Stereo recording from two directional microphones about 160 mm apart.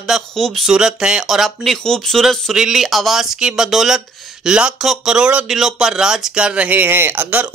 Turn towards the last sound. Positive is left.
turn(degrees=-10)  # may be behind; listen again after turning